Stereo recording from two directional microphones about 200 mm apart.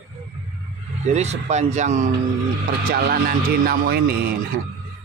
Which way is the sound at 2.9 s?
50° right (ahead or behind).